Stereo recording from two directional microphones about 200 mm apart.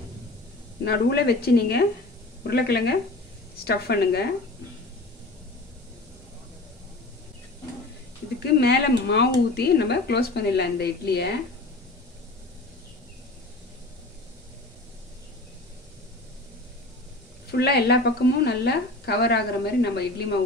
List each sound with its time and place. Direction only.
0.8 s a woman's voice: 55° left (ahead or behind)
8.5 s a woman's voice: 55° left (ahead or behind)
17.5 s a woman's voice: 55° left (ahead or behind)